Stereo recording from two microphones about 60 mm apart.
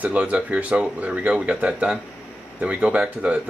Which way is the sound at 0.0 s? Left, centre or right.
Right.